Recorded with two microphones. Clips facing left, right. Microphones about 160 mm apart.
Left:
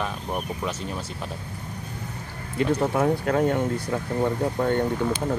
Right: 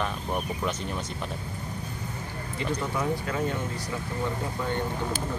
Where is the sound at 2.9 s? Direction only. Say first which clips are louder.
Left 7 dB; 60° left (ahead or behind).